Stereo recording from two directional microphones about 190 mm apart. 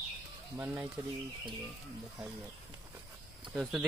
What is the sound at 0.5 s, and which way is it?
Speech, 10° right (ahead or behind).